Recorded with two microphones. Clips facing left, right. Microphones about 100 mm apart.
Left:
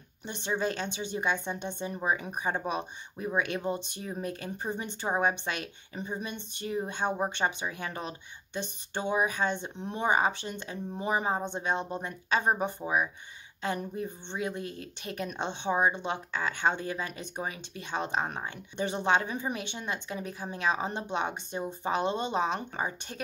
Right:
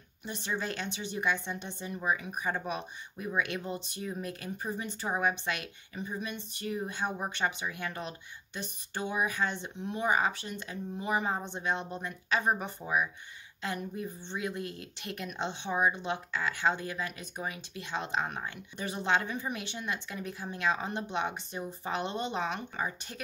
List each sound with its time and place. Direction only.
0.2 s speech: 25° left (ahead or behind)